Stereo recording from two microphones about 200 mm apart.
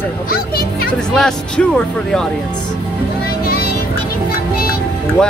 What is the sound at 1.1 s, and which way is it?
Speech, 5° left (ahead or behind).